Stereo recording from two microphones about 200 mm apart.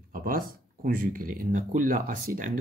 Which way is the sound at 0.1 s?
45° right (ahead or behind).